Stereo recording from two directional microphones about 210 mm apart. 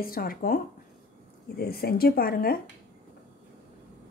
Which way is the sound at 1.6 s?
45° left (ahead or behind).